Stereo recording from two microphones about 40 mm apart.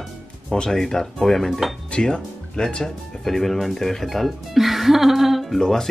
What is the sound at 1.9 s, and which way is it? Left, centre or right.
Speech, left.